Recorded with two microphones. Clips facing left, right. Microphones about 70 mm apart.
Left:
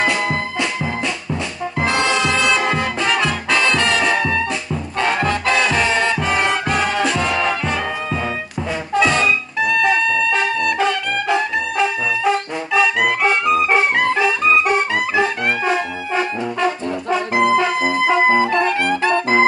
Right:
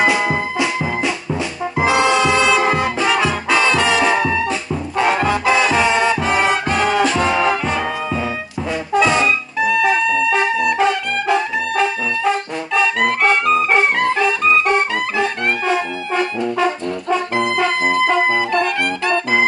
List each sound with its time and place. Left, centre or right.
0.0 s music: centre
16.2 s brass instrument: centre
17.4 s music: centre
18.3 s music: left